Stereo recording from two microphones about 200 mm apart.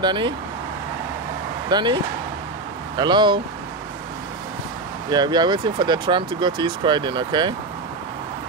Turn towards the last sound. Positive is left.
turn(degrees=-25)  # may be behind; listen again after turning